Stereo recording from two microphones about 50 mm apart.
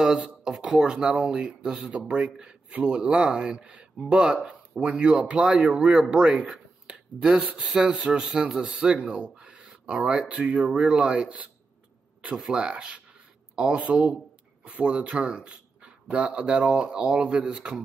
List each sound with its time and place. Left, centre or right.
0.0 s speech: centre
6.9 s a sound: centre
7.5 s speech: right